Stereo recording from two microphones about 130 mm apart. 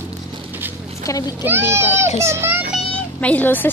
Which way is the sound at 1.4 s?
15° right (ahead or behind).